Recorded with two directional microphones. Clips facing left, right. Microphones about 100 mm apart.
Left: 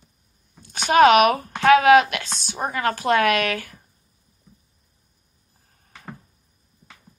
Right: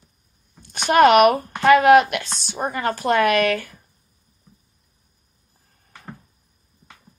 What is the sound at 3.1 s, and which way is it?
Speech, 45° right (ahead or behind).